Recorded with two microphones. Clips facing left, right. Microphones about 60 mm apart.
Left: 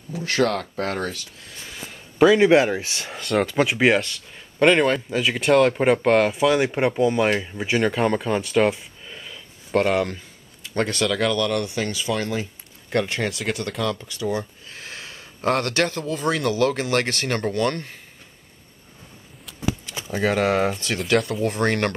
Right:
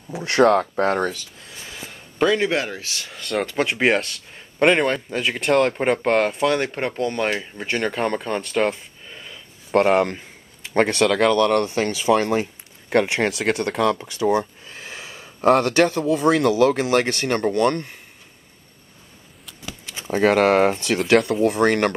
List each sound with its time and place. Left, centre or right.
0.2 s speech: right
0.6 s speech: right
0.9 s speech: centre
2.1 s speech: centre
2.4 s speech: centre
3.1 s speech: centre
9.8 s speech: right
13.4 s speech: right
13.8 s speech: right
14.7 s speech: centre
17.3 s speech: centre
17.6 s speech: right
20.0 s speech: right
21.0 s speech: centre